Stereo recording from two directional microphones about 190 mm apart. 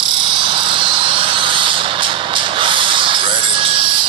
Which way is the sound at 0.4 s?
25° right (ahead or behind).